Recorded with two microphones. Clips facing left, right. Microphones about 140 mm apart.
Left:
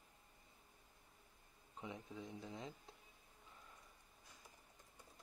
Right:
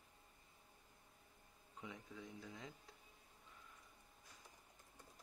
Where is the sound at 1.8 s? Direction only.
25° left (ahead or behind).